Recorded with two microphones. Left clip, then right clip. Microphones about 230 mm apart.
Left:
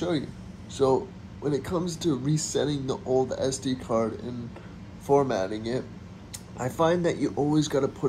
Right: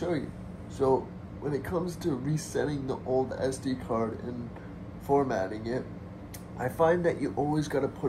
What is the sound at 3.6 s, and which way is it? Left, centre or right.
Speech, left.